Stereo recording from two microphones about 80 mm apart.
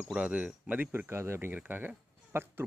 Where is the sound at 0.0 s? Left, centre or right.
Centre.